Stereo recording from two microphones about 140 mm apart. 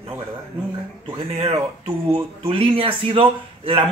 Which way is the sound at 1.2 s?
45° right (ahead or behind).